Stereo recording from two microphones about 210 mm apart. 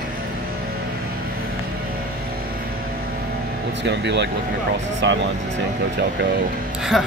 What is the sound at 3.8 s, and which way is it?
Speech, 55° right (ahead or behind).